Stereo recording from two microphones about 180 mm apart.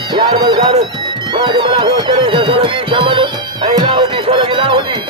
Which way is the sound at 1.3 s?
25° right (ahead or behind).